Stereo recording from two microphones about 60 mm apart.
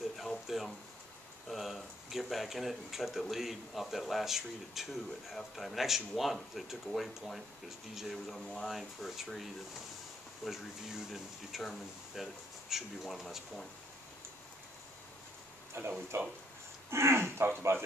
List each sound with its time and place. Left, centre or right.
0.2 s a sound: centre
1.5 s speech: centre
15.8 s speech: right